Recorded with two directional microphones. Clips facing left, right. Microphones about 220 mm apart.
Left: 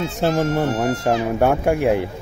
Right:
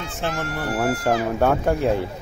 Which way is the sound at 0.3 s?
25° left (ahead or behind).